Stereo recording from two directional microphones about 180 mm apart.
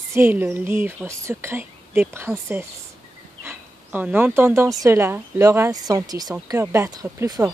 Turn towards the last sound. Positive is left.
turn(degrees=-15)  # may be behind; listen again after turning